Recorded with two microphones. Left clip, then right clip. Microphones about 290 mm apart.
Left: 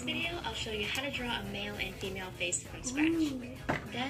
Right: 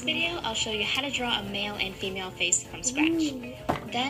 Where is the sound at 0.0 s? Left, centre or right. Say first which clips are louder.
Right 7 dB; right.